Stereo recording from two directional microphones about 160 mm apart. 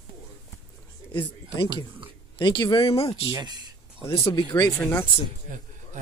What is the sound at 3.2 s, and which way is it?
Speech, 25° right (ahead or behind).